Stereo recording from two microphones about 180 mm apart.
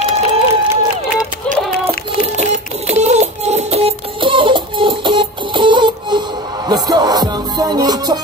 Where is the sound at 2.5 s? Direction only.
40° right (ahead or behind).